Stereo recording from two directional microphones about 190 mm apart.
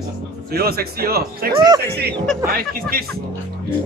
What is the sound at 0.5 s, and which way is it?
A man's voice, 55° right (ahead or behind).